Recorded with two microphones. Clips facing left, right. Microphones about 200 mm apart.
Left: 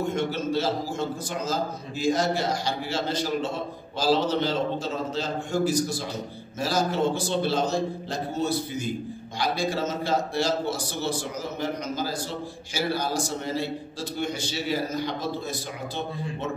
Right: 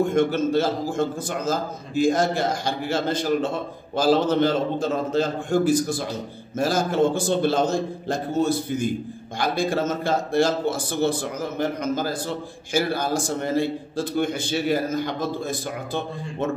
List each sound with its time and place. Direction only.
0.1 s a man's voice: 50° right (ahead or behind)